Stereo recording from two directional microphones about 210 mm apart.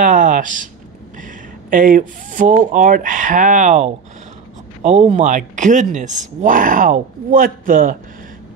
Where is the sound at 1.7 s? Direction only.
40° right (ahead or behind).